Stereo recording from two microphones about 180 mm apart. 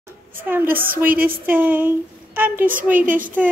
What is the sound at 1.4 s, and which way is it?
A woman's voice, 10° right (ahead or behind).